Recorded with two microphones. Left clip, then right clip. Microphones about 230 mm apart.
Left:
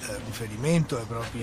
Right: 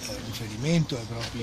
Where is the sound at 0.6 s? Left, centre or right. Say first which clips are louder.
Left 2 dB; centre.